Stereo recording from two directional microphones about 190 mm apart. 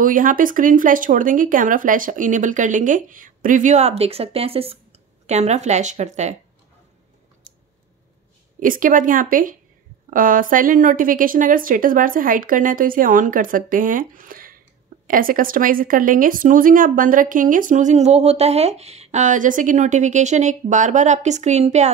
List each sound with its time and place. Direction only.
0.0 s speech: 45° right (ahead or behind)
7.5 s a sound: 45° right (ahead or behind)
8.5 s speech: 45° right (ahead or behind)